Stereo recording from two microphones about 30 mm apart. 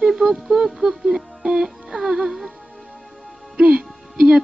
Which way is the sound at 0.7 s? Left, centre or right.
Centre.